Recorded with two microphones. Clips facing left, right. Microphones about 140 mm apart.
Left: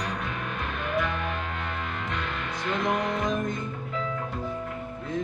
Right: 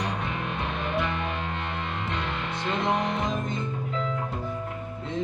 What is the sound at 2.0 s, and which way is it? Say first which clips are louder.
Music: right 1 dB; 25° right (ahead or behind).